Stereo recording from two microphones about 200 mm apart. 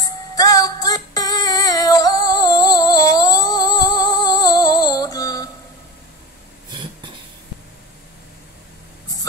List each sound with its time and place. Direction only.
0.4 s female singing: 20° left (ahead or behind)